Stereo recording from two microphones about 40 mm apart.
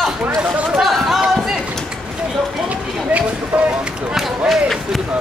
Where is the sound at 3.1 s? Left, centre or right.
Right.